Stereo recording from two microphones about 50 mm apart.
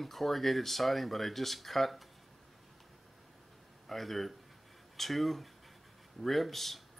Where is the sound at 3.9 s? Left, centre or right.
Centre.